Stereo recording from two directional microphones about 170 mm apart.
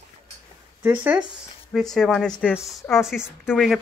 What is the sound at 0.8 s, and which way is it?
Speech, 10° right (ahead or behind).